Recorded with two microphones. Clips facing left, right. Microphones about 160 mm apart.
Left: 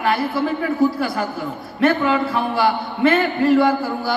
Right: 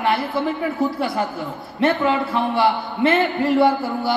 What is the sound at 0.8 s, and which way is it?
A man's voice, 20° right (ahead or behind).